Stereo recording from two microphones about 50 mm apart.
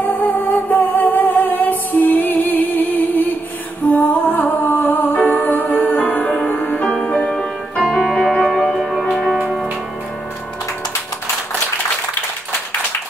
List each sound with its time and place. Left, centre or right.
0.0 s music: left
7.0 s music: centre
7.9 s keyboard: centre
8.5 s music: centre